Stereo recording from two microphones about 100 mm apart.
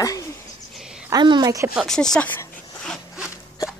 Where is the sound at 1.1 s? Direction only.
45° right (ahead or behind).